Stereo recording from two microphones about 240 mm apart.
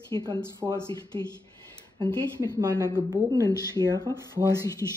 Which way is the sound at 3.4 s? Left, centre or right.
Centre.